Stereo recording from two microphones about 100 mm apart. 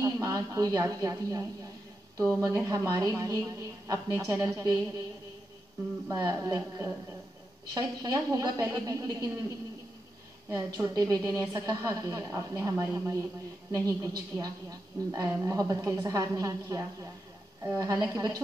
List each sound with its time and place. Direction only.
0.0 s a woman's voice: 40° right (ahead or behind)
6.0 s a woman's voice: 40° right (ahead or behind)
10.5 s a woman's voice: 35° right (ahead or behind)